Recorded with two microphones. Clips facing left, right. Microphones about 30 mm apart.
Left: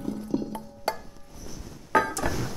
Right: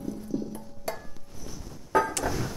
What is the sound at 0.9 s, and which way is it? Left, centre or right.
Music, left.